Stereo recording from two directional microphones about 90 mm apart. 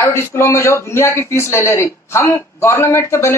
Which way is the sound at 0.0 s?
30° left (ahead or behind).